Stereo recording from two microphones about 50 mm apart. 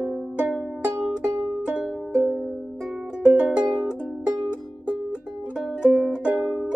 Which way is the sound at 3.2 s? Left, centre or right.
Right.